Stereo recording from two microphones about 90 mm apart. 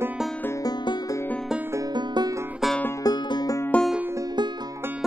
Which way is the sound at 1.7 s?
35° right (ahead or behind).